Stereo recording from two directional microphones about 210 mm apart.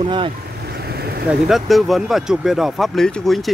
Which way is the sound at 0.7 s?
50° right (ahead or behind).